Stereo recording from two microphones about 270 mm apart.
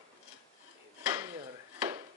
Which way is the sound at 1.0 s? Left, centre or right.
Centre.